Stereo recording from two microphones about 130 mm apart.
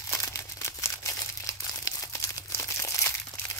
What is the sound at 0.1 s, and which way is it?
Crumpling, 25° left (ahead or behind).